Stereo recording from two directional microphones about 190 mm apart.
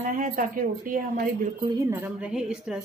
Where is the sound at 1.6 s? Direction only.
15° right (ahead or behind).